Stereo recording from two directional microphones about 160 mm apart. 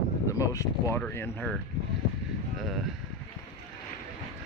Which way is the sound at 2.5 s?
Centre (ahead or behind).